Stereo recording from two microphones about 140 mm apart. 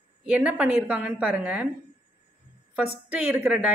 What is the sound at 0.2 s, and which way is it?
A woman's voice, 10° right (ahead or behind).